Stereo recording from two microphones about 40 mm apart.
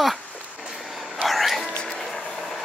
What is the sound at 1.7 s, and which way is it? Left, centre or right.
Music, left.